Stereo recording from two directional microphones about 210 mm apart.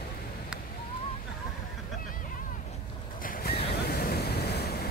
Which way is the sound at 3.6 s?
50° left (ahead or behind).